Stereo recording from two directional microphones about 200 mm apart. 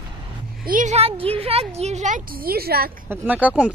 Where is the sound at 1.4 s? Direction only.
30° right (ahead or behind); by 2.9 s 50° right (ahead or behind).